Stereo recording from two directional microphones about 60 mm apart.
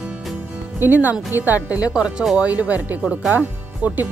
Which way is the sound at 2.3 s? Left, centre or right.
Right.